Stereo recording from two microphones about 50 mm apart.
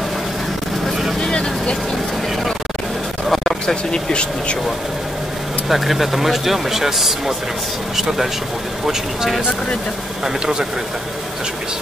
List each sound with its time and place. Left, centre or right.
1.2 s vehicle: centre
3.3 s speech: centre
5.7 s speech: centre